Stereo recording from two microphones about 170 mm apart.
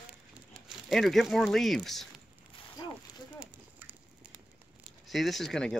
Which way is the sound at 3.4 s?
10° right (ahead or behind).